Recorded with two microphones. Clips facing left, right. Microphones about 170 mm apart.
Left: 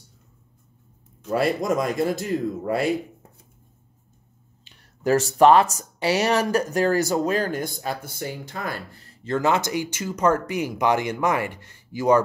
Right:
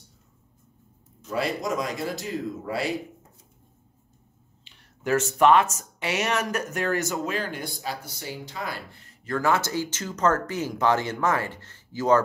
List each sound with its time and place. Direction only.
1.3 s a man's voice: 55° left (ahead or behind)
5.0 s speech: 35° left (ahead or behind)
9.2 s speech: 20° left (ahead or behind)